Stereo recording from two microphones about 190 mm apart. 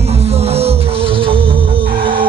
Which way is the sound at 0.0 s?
35° right (ahead or behind).